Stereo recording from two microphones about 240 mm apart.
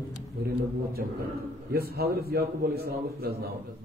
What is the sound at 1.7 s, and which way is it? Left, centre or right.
A man's voice, right.